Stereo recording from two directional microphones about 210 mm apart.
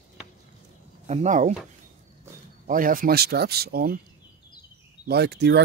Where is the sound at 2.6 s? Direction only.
40° right (ahead or behind).